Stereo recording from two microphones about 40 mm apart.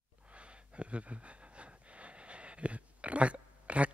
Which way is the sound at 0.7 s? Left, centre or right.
Right.